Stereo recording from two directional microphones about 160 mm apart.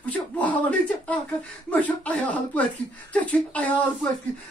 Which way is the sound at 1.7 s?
10° left (ahead or behind).